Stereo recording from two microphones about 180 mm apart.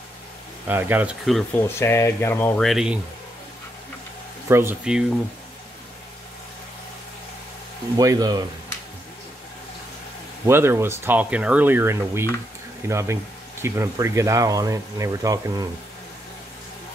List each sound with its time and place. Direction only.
0.7 s speech: 10° right (ahead or behind)
1.5 s speech: 15° left (ahead or behind); by 3.0 s 5° right (ahead or behind)
4.5 s speech: 15° right (ahead or behind)
8.0 s speech: 20° right (ahead or behind)
10.4 s speech: 15° right (ahead or behind)